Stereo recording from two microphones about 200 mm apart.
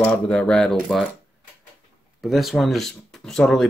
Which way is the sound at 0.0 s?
5° left (ahead or behind).